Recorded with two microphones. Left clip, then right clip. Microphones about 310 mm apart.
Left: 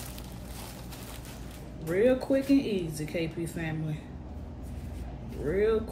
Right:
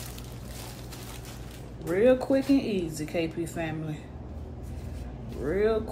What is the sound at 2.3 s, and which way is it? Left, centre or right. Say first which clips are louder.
Speech: right 1 dB; centre.